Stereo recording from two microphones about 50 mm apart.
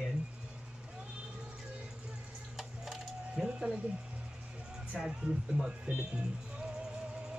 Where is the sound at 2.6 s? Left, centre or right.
Centre.